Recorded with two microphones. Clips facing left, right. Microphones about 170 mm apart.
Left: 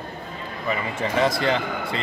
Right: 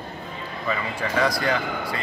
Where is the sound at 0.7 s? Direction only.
25° left (ahead or behind).